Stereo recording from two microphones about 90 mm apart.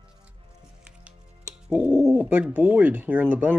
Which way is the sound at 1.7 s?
10° right (ahead or behind).